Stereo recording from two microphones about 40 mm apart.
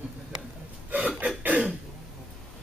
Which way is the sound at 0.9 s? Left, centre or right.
Right.